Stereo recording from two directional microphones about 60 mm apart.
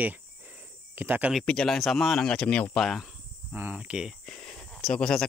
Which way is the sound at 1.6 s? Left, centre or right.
Centre.